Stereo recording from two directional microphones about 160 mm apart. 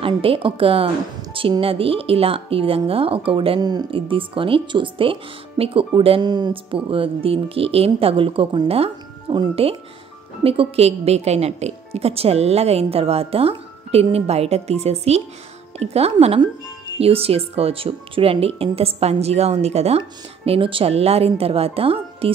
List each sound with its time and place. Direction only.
0.0 s a woman's voice: 35° right (ahead or behind)